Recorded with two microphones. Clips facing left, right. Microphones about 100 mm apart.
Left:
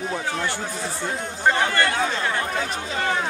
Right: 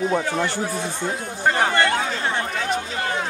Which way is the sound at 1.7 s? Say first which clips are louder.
Right 1 dB; 25° right (ahead or behind).